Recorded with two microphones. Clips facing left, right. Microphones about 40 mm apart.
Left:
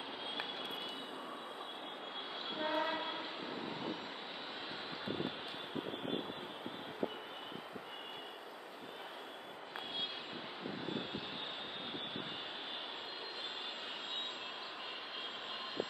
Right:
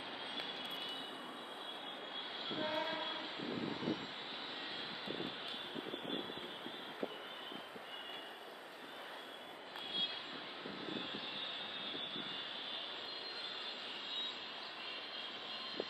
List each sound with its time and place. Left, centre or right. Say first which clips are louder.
2.6 s train: left 4 dB; left